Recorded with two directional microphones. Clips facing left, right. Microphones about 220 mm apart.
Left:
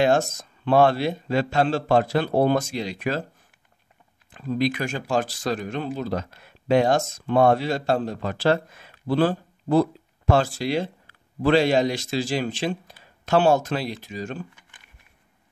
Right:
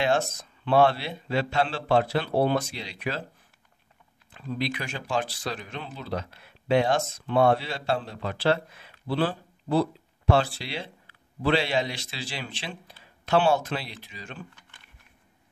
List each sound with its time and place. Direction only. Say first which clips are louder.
0.0 s speech: left 5 dB; 45° left (ahead or behind)
4.5 s speech: left 7 dB; 45° left (ahead or behind)